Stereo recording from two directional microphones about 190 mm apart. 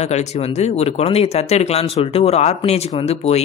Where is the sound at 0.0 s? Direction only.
35° left (ahead or behind).